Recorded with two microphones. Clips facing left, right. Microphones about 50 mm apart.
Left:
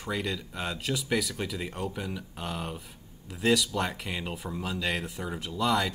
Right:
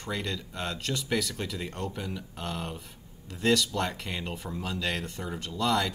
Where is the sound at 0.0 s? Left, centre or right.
Centre.